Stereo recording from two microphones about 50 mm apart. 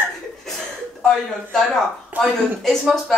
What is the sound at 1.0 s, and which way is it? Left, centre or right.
Speech, centre.